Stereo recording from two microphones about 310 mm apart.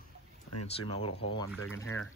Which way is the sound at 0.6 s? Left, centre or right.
Centre.